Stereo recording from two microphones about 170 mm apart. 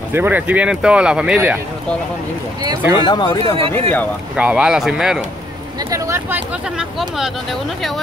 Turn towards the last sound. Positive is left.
turn(degrees=-5)  # may be behind; listen again after turning